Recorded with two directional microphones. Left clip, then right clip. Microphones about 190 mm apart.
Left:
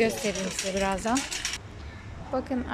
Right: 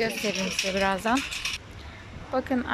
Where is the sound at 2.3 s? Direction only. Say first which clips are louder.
Right 2 dB; 5° left (ahead or behind).